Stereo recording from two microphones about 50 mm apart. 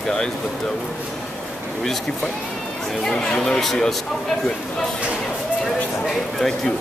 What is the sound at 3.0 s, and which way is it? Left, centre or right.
Speech, centre.